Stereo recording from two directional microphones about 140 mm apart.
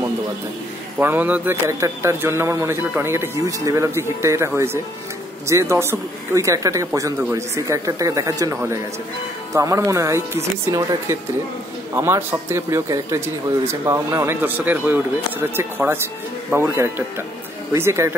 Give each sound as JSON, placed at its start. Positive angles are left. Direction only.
{"t": 0.9, "sound": "speech", "side_deg": -15}